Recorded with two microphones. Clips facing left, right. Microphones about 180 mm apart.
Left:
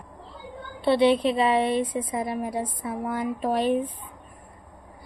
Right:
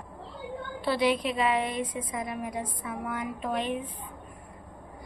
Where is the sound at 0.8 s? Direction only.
30° left (ahead or behind).